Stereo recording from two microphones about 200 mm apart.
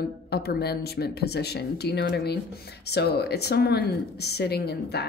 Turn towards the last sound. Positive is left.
turn(degrees=55)  # may be behind; listen again after turning